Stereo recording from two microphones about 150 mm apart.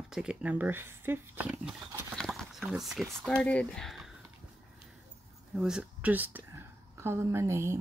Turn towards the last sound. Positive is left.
turn(degrees=-20)  # may be behind; listen again after turning